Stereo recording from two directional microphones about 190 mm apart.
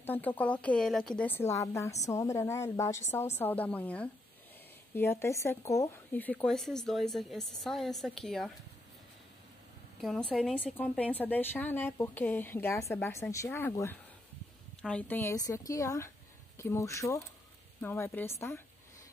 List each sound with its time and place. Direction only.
0.0 s a woman's voice: 10° left (ahead or behind)
10.0 s a woman's voice: 5° left (ahead or behind)